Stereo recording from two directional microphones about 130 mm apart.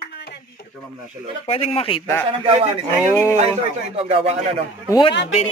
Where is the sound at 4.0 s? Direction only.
50° right (ahead or behind).